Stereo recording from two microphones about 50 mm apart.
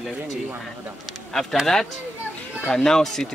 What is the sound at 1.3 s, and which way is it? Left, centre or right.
Speech, centre.